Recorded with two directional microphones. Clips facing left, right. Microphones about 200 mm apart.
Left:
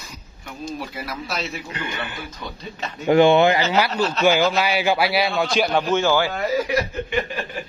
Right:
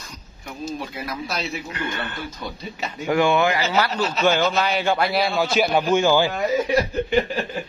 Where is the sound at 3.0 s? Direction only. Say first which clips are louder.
Left 5 dB; 25° left (ahead or behind).